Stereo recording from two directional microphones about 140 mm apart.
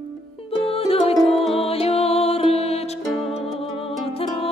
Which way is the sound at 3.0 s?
Centre (ahead or behind).